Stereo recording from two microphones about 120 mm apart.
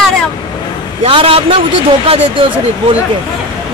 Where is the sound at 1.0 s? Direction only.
50° right (ahead or behind).